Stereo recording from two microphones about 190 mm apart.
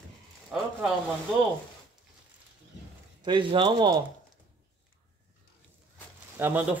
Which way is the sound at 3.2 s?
25° right (ahead or behind).